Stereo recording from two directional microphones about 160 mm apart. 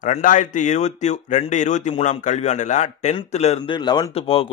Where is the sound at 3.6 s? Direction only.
25° left (ahead or behind).